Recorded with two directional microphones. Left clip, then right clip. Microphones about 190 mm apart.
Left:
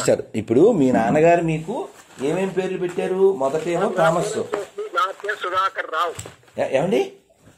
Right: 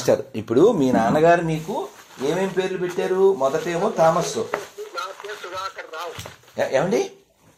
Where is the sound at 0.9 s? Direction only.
35° left (ahead or behind).